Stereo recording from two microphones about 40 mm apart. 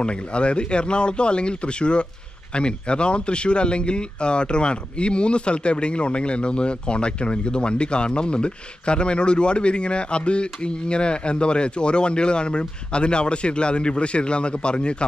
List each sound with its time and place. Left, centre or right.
0.0 s speech: left